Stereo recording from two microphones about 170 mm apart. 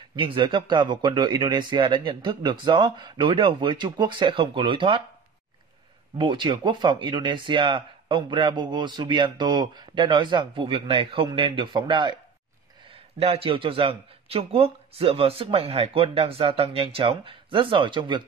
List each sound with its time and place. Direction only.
0.1 s speech: 30° right (ahead or behind)
6.1 s speech: 30° right (ahead or behind)
13.2 s speech: 35° right (ahead or behind)